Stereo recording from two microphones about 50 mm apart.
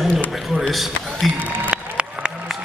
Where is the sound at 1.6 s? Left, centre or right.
Right.